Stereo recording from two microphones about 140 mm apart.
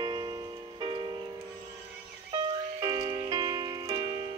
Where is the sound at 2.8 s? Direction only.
30° right (ahead or behind).